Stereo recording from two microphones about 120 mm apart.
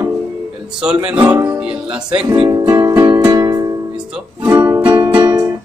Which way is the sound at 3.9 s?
10° right (ahead or behind).